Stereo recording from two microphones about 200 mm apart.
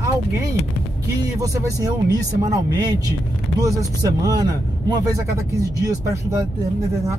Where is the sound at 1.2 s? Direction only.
15° right (ahead or behind).